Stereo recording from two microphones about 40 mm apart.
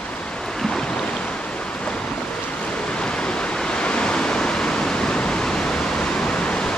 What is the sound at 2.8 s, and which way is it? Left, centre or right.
Waves, left.